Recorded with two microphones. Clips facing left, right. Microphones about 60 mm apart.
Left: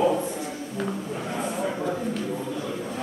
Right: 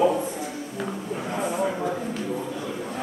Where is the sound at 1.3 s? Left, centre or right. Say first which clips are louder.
Right 3 dB; centre.